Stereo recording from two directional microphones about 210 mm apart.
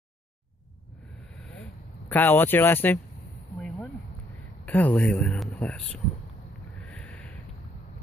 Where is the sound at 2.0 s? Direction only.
10° left (ahead or behind).